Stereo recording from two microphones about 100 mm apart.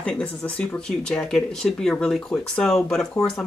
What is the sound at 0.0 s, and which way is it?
Speech, 10° left (ahead or behind).